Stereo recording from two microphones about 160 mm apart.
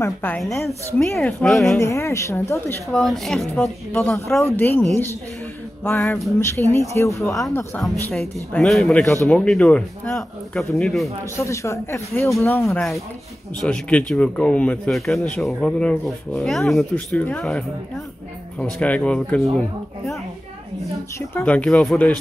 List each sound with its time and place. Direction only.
0.0 s speech: 10° left (ahead or behind)
0.4 s speech: centre (ahead or behind)
1.8 s speech: 20° left (ahead or behind)
2.9 s speech: centre (ahead or behind)
5.9 s speech: 10° left (ahead or behind)
7.2 s speech: centre (ahead or behind)
11.3 s speech: 20° left (ahead or behind)
21.4 s speech: 10° left (ahead or behind)